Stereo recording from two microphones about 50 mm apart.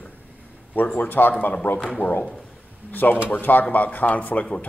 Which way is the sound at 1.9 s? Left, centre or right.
Centre.